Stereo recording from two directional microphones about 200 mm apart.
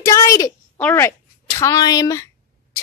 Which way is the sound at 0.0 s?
15° left (ahead or behind).